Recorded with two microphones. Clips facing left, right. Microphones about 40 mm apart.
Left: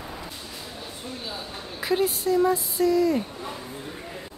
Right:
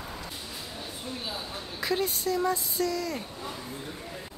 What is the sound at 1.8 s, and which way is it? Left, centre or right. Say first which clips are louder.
Speech: left 5 dB; centre.